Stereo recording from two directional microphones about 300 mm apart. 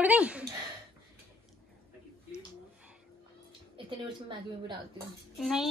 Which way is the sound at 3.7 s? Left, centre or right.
Centre.